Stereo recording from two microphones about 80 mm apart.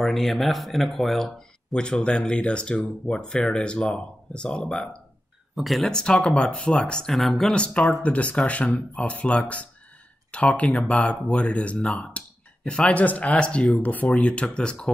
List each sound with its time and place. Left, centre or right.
0.0 s speech: centre
5.6 s speech: centre
5.9 s speech: centre